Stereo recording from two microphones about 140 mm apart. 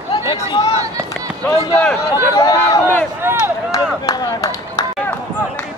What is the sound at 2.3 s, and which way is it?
Speech, 20° left (ahead or behind).